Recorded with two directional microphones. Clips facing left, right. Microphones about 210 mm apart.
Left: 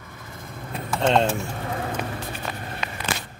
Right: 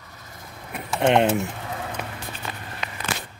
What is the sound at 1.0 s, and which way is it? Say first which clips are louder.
Speech: right 2 dB; 20° right (ahead or behind).